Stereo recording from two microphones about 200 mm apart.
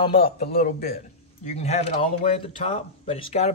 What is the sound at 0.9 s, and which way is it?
Speech, 35° left (ahead or behind).